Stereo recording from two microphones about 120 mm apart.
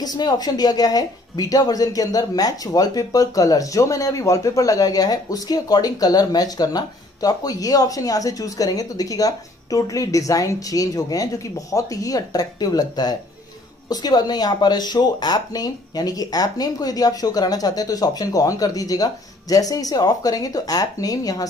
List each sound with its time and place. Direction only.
0.0 s speech: 35° left (ahead or behind)